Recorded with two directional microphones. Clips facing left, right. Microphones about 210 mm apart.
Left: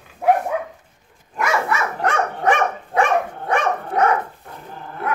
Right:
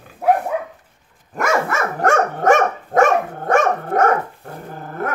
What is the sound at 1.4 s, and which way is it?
Dog, 45° right (ahead or behind).